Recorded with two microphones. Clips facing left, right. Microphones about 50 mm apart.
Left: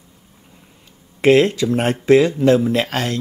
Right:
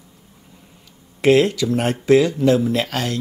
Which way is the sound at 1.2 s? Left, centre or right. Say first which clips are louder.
Left 2 dB; left.